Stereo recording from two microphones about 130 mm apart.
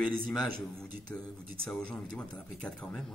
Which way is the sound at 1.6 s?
10° left (ahead or behind).